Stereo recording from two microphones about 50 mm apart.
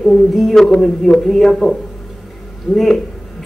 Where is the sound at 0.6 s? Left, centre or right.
Centre.